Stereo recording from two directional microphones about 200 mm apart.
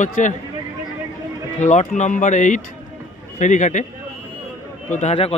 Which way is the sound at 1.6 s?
35° left (ahead or behind).